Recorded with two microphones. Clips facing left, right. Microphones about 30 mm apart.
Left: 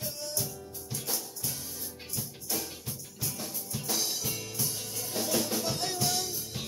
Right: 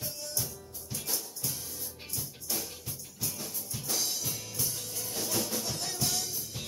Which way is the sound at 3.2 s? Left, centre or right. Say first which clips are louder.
Left 1 dB; centre.